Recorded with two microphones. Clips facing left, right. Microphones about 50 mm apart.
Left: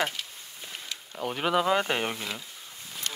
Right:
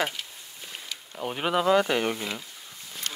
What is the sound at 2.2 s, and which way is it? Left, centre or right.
Speech, centre.